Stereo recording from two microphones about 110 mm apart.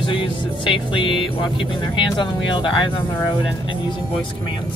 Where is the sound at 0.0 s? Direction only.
50° left (ahead or behind).